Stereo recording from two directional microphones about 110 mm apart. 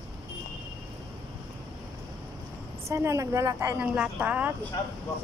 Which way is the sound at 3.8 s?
10° right (ahead or behind).